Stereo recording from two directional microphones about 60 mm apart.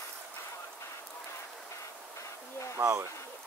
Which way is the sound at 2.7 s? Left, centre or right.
Right.